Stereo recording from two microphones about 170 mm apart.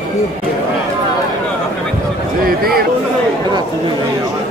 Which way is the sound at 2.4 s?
60° right (ahead or behind).